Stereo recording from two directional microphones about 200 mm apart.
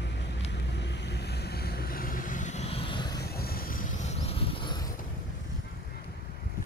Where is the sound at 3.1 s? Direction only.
50° left (ahead or behind); by 4.8 s 25° left (ahead or behind).